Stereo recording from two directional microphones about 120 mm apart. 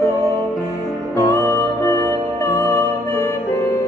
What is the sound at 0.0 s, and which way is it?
Music, 25° left (ahead or behind).